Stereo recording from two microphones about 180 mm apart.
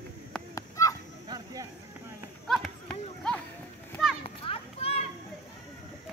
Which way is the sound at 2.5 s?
5° left (ahead or behind).